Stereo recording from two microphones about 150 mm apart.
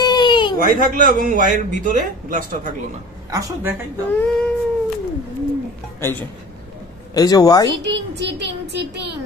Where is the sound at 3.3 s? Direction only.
20° right (ahead or behind).